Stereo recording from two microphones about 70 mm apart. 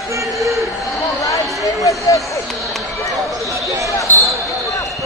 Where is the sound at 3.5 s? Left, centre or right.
Right.